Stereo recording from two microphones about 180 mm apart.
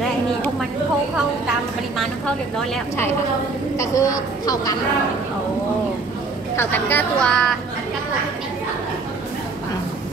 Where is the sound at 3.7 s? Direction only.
20° left (ahead or behind).